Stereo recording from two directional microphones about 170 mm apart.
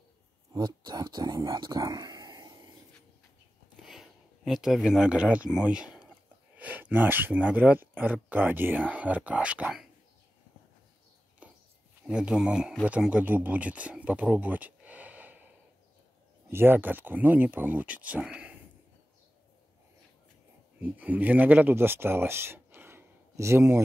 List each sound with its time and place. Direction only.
0.5 s speech: 25° right (ahead or behind)
3.8 s speech: centre (ahead or behind)
12.1 s speech: 5° right (ahead or behind)
16.4 s speech: 15° right (ahead or behind)
20.8 s speech: 10° right (ahead or behind)